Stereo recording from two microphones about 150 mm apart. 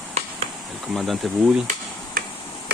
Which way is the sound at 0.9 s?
Centre (ahead or behind).